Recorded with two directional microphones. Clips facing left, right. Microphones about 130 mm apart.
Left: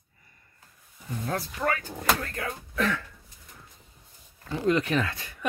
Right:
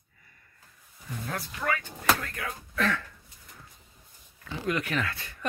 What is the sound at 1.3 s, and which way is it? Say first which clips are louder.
Speech: left 3 dB; 35° left (ahead or behind).